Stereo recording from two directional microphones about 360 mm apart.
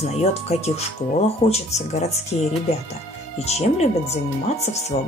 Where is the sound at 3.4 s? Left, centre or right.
Centre.